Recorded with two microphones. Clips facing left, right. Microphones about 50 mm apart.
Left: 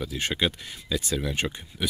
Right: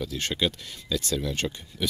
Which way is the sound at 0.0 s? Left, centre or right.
Centre.